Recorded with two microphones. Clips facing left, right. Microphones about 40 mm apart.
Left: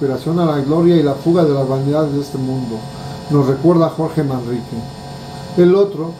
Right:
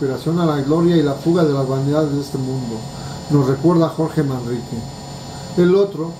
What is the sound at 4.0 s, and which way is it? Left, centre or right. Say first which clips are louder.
Speech: left 1 dB; left.